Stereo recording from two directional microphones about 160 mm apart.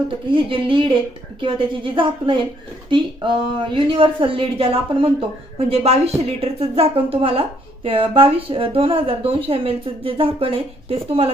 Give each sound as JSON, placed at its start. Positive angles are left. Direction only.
{"t": 0.3, "sound": "a woman's voice", "side_deg": -35}